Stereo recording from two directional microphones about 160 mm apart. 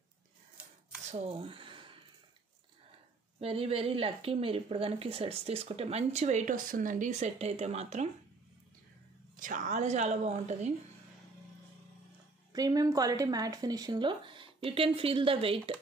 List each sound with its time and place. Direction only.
1.1 s speech: 35° right (ahead or behind)
3.3 s a woman's voice: 40° right (ahead or behind)
9.4 s a woman's voice: 50° right (ahead or behind)
12.5 s speech: 25° right (ahead or behind)